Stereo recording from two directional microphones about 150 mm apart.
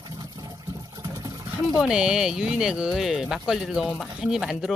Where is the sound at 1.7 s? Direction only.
5° right (ahead or behind).